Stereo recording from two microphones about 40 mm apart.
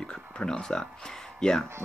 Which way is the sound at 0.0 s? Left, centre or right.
Left.